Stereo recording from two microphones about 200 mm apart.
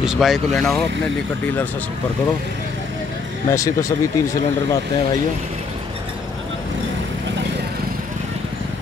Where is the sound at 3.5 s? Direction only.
15° left (ahead or behind).